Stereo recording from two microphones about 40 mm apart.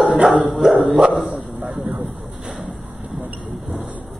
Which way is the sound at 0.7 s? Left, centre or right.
Centre.